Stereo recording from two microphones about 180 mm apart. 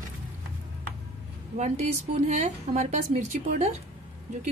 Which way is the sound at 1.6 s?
40° right (ahead or behind).